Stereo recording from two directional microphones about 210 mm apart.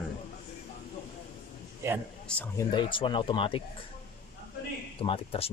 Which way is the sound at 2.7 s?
25° left (ahead or behind).